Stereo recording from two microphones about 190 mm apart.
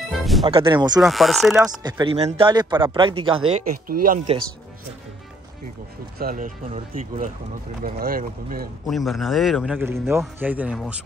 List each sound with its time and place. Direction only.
0.1 s music: centre (ahead or behind)
0.5 s speech: 25° right (ahead or behind)
1.0 s a man's voice: centre (ahead or behind)
1.8 s speech: 20° right (ahead or behind)
3.8 s speech: 50° right (ahead or behind)
6.1 s speech: 50° right (ahead or behind)
8.8 s a man's voice: centre (ahead or behind)